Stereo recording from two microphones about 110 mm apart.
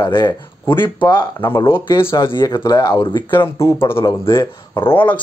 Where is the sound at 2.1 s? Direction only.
40° left (ahead or behind).